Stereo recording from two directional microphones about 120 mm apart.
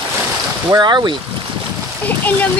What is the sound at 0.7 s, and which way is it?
Speech, 35° right (ahead or behind).